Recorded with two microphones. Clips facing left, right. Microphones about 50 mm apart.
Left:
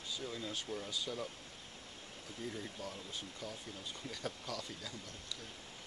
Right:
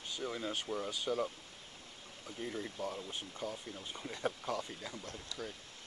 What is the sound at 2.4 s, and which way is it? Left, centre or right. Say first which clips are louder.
Speech: right 4 dB; right.